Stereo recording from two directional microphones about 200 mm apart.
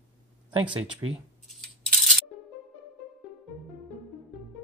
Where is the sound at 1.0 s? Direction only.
20° right (ahead or behind).